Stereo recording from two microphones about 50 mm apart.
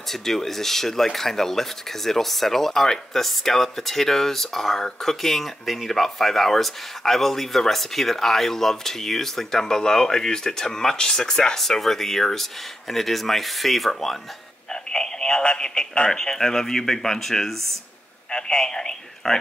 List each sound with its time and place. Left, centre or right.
0.1 s speech: centre
14.7 s a man's voice: centre